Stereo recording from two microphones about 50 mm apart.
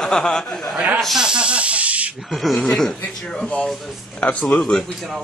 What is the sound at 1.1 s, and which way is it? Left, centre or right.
Snake, centre.